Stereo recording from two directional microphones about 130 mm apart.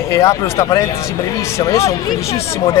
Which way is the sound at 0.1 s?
25° left (ahead or behind).